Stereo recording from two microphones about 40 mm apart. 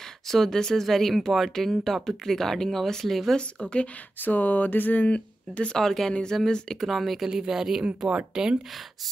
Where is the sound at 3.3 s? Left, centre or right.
Centre.